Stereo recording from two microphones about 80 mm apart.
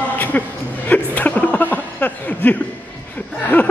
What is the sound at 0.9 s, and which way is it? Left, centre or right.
Chuckle, left.